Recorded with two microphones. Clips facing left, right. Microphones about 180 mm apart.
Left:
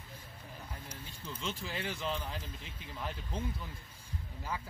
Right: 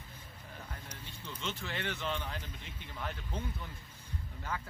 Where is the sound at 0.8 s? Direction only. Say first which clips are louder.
Left 1 dB; 5° left (ahead or behind).